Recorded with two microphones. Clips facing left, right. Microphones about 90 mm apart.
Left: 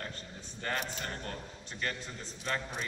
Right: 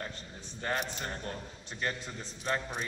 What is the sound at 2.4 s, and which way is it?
Speech, 25° right (ahead or behind).